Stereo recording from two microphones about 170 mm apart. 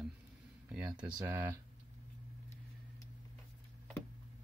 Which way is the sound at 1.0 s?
15° right (ahead or behind).